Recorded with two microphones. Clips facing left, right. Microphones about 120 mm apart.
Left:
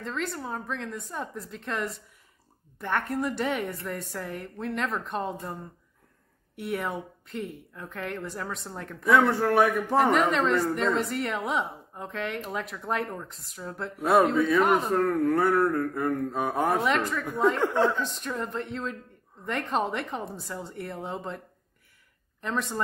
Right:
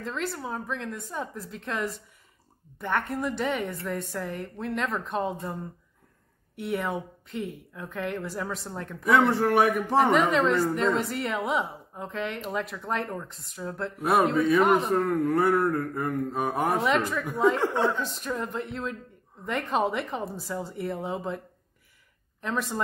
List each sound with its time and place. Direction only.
0.0 s a woman's voice: centre (ahead or behind)
9.2 s a man's voice: 15° right (ahead or behind)
9.7 s a woman's voice: centre (ahead or behind)
15.0 s speech: 20° right (ahead or behind)
16.3 s a woman's voice: 10° right (ahead or behind)
22.4 s a woman's voice: centre (ahead or behind)